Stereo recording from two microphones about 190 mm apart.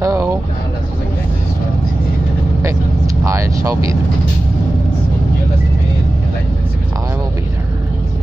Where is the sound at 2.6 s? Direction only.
15° right (ahead or behind).